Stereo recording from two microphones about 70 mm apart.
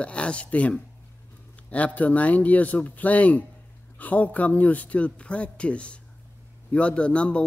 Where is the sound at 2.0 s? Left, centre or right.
Left.